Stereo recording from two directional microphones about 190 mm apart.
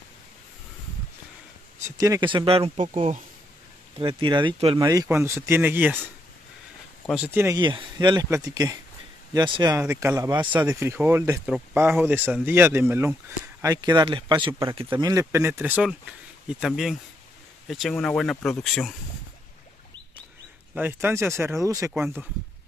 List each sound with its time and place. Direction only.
1.9 s speech: 20° right (ahead or behind); by 18.9 s centre (ahead or behind)
20.7 s speech: 10° right (ahead or behind)